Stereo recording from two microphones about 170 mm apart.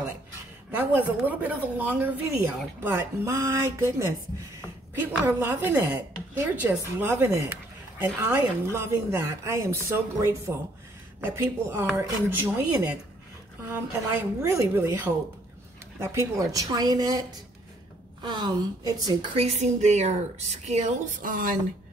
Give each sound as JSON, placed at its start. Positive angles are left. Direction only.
{"t": 0.7, "sound": "a woman's voice", "side_deg": -10}
{"t": 13.7, "sound": "a woman's voice", "side_deg": -15}
{"t": 19.3, "sound": "speech", "side_deg": -40}